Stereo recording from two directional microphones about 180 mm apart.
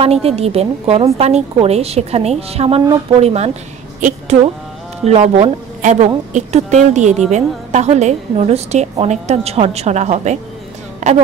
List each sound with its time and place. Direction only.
0.0 s a woman's voice: 35° right (ahead or behind)
5.0 s a woman's voice: 35° right (ahead or behind)